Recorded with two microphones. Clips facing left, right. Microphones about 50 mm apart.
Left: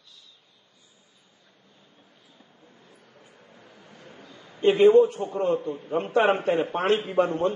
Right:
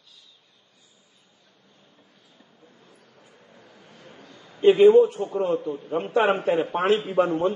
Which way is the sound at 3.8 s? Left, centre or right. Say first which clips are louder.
Even; left.